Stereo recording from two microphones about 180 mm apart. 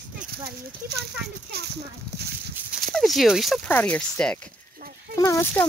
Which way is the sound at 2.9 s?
Centre (ahead or behind).